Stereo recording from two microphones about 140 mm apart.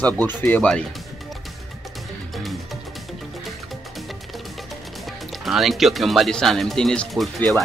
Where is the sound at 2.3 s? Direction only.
Centre (ahead or behind).